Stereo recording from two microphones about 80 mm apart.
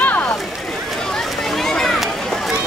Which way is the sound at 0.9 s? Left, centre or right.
Centre.